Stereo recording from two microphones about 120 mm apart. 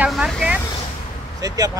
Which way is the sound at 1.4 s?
30° right (ahead or behind).